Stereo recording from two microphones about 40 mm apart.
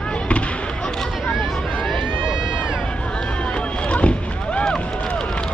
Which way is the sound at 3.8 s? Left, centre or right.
Left.